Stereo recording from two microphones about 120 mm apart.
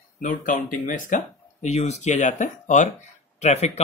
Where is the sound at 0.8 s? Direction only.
90° left.